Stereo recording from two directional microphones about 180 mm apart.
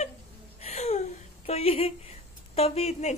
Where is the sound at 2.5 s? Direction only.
35° left (ahead or behind).